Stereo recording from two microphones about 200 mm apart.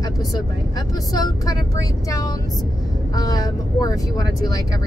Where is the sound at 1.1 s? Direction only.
20° left (ahead or behind).